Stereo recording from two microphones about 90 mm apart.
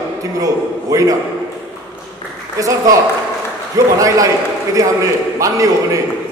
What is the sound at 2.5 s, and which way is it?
Speech, 40° right (ahead or behind).